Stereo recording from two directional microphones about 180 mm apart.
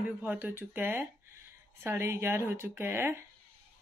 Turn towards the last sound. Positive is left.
turn(degrees=-15)  # may be behind; listen again after turning